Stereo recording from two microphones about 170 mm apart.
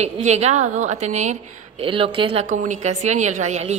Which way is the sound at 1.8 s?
30° right (ahead or behind).